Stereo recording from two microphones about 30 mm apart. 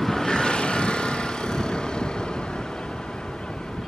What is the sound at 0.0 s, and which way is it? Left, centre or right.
Vehicle, centre.